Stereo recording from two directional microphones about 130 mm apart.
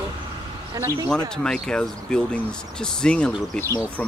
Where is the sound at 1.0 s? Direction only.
5° left (ahead or behind).